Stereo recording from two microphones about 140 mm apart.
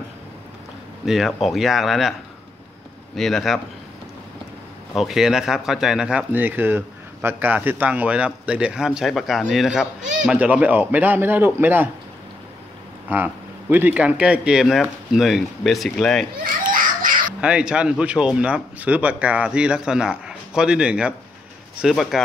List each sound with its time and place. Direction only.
1.0 s speech: centre (ahead or behind)
3.2 s speech: centre (ahead or behind)
4.9 s speech: centre (ahead or behind)
13.1 s speech: 15° right (ahead or behind); by 16.3 s centre (ahead or behind)
16.4 s children playing: 80° right
17.4 s speech: 5° right (ahead or behind)